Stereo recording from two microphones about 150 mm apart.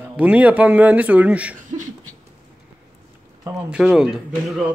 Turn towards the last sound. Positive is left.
turn(degrees=-5)  # may be behind; listen again after turning